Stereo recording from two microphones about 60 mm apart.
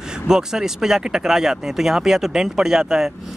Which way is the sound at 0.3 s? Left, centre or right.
Centre.